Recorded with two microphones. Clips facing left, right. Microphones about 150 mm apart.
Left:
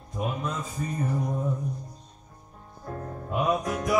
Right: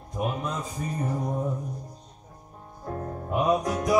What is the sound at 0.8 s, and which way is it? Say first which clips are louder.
Music: even; 30° right (ahead or behind).